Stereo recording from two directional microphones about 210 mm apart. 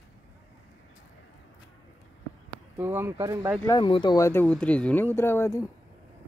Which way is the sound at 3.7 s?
20° left (ahead or behind).